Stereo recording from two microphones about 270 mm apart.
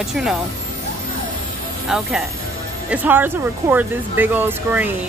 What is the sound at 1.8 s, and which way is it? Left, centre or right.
Speech, centre.